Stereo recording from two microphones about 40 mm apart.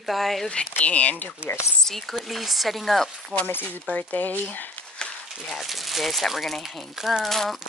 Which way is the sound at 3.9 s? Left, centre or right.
Left.